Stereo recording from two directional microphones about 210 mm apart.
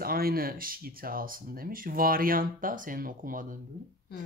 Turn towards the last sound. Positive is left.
turn(degrees=-40)  # may be behind; listen again after turning